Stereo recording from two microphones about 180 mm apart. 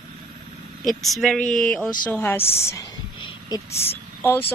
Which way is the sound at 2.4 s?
35° left (ahead or behind).